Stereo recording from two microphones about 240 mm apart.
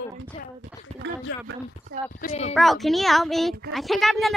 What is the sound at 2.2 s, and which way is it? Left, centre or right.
Speech, left.